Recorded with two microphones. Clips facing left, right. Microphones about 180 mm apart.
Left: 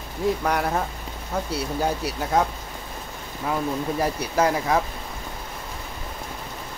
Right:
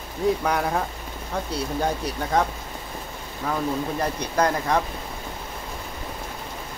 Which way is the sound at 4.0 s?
5° left (ahead or behind).